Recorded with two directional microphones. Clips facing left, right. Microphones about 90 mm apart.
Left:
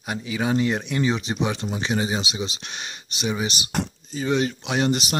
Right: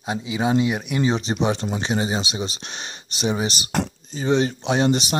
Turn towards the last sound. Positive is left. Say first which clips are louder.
# right 3 dB
turn(degrees=-30)  # may be behind; listen again after turning